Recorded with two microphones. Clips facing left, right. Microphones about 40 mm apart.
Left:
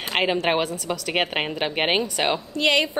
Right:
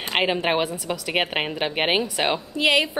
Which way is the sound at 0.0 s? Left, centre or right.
Centre.